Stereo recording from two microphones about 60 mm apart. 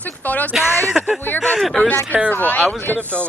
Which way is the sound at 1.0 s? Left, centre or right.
Centre.